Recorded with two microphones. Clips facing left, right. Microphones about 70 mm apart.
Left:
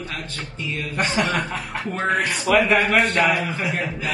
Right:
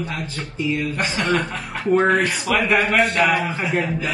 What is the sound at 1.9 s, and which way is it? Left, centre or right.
Speech, centre.